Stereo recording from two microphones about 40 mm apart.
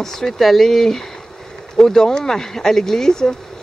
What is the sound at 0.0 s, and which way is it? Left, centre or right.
Speech, centre.